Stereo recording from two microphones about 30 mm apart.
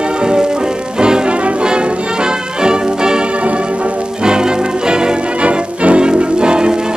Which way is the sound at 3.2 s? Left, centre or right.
Right.